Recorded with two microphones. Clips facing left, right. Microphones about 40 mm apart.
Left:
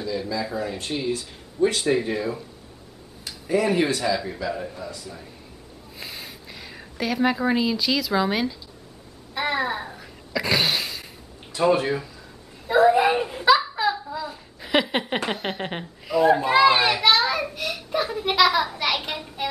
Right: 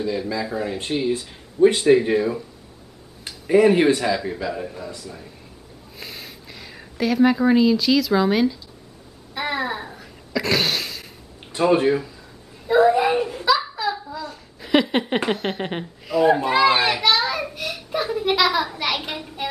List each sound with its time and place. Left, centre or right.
0.4 s a man's voice: centre
1.8 s a man's voice: centre
3.3 s speech: right
4.5 s a man's voice: centre
9.3 s a sound: centre
11.5 s speech: right
12.6 s a child's voice: centre
13.8 s a sound: left
14.1 s a sound: centre
15.2 s a child's voice: centre